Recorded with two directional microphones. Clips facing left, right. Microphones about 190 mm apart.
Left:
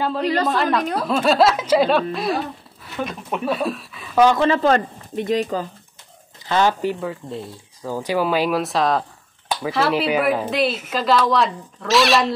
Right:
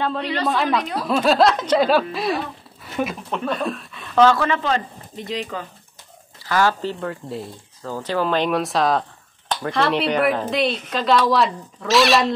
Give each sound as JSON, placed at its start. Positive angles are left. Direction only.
{"t": 0.2, "sound": "speech", "side_deg": 45}
{"t": 0.5, "sound": "speech", "side_deg": 0}
{"t": 4.5, "sound": "speech", "side_deg": 35}
{"t": 4.7, "sound": "speech", "side_deg": 50}
{"t": 6.4, "sound": "speech", "side_deg": 20}
{"t": 7.1, "sound": "speech", "side_deg": 0}
{"t": 7.8, "sound": "speech", "side_deg": 10}